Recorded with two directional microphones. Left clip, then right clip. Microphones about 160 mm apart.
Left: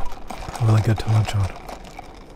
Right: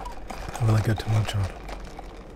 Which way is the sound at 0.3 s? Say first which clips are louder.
Left 4 dB; 25° left (ahead or behind).